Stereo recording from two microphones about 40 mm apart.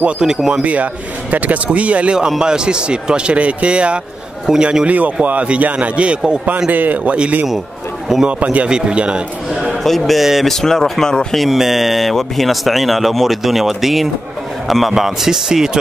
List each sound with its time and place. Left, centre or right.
0.5 s speech: right
2.1 s speech: centre
4.5 s a man's voice: centre
4.8 s speech: right
6.7 s speech: right
8.3 s speech: right
8.6 s speech: right
9.6 s a man's voice: centre
10.4 s speech: centre
11.3 s a man's voice: centre